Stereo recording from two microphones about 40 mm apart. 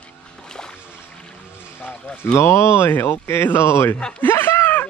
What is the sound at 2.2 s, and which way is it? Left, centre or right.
Speech, left.